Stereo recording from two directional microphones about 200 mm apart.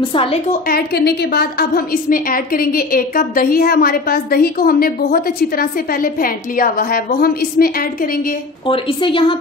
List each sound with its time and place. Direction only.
0.1 s a woman's voice: 25° left (ahead or behind)
0.5 s a woman's voice: 50° left (ahead or behind)
8.6 s a woman's voice: 25° left (ahead or behind)